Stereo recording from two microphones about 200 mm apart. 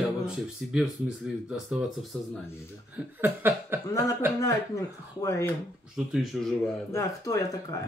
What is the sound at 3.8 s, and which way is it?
Speech, 15° left (ahead or behind).